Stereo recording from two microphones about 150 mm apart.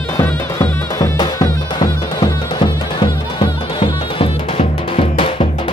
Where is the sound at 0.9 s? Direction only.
20° left (ahead or behind).